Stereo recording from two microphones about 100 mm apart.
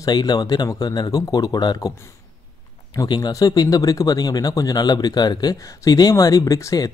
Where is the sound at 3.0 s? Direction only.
50° left (ahead or behind).